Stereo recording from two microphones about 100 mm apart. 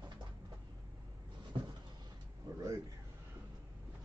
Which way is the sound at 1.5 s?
50° right (ahead or behind).